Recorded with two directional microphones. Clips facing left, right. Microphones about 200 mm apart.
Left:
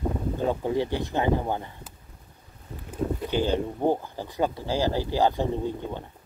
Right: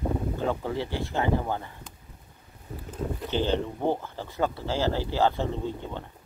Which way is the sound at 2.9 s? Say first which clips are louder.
Left 3 dB; 10° left (ahead or behind).